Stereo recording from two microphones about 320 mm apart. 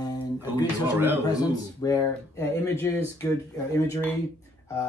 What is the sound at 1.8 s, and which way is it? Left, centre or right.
Speech, centre.